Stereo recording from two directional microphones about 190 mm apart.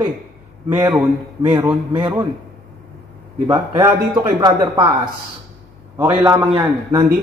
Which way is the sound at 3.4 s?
20° right (ahead or behind).